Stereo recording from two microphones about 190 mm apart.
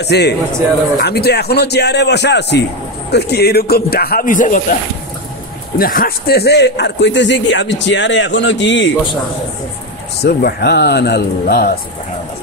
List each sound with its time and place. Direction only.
0.0 s a man's voice: 60° left (ahead or behind); by 4.7 s 45° left (ahead or behind)
5.8 s a man's voice: 50° left (ahead or behind); by 8.9 s 70° left (ahead or behind)
10.2 s a man's voice: 60° left (ahead or behind)